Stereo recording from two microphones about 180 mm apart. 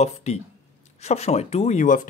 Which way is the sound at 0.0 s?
40° left (ahead or behind).